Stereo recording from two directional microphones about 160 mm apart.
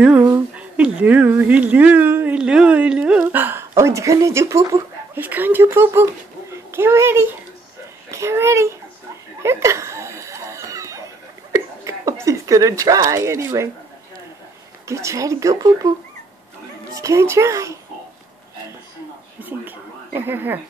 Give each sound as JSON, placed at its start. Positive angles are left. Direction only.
{"t": 0.2, "sound": "a child's voice", "side_deg": -10}
{"t": 9.4, "sound": "a sound", "side_deg": -20}
{"t": 11.5, "sound": "speech", "side_deg": -20}
{"t": 14.9, "sound": "speech", "side_deg": -20}
{"t": 16.9, "sound": "speech", "side_deg": -20}
{"t": 19.4, "sound": "speech", "side_deg": -10}